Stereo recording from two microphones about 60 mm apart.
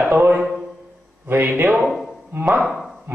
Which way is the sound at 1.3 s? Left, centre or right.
Right.